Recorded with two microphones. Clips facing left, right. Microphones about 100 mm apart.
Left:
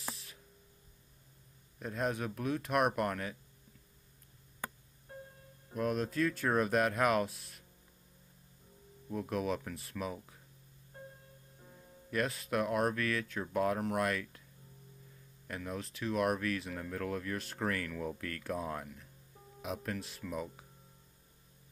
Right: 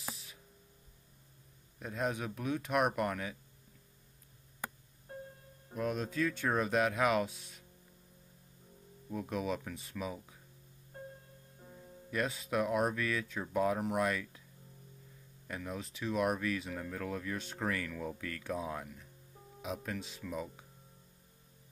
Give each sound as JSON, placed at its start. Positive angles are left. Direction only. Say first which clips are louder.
{"t": 0.1, "sound": "spray", "louder": "even", "side_deg": 0}
{"t": 1.8, "sound": "speech", "louder": "left 1 dB", "side_deg": 0}
{"t": 5.8, "sound": "speech", "louder": "left 2 dB", "side_deg": 0}
{"t": 9.1, "sound": "speech", "louder": "left 1 dB", "side_deg": 0}
{"t": 11.6, "sound": "speech", "louder": "right 4 dB", "side_deg": -5}
{"t": 15.4, "sound": "speech", "louder": "left 1 dB", "side_deg": 0}